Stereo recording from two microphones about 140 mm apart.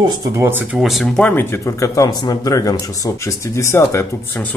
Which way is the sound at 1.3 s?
15° left (ahead or behind).